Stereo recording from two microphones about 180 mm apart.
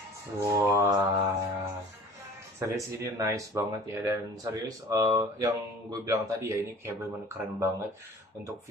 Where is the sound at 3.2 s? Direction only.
15° right (ahead or behind).